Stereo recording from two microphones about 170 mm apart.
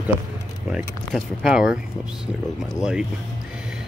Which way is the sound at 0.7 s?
Centre (ahead or behind).